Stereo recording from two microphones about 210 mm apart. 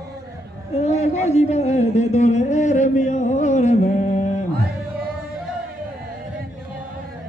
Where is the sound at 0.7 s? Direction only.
30° left (ahead or behind).